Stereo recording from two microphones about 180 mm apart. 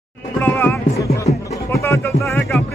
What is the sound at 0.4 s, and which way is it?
Music, 10° left (ahead or behind).